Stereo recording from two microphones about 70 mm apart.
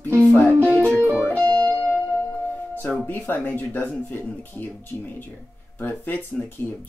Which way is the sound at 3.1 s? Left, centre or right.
Left.